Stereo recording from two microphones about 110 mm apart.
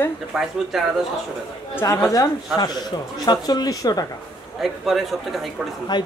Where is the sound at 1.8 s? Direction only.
30° left (ahead or behind).